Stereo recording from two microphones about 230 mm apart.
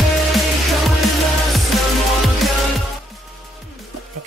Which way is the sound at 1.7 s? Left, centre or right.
Centre.